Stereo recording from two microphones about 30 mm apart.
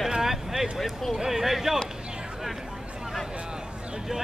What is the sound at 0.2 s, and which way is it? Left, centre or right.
Vehicle, centre.